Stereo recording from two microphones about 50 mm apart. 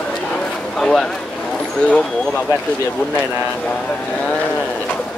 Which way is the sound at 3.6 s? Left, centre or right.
Left.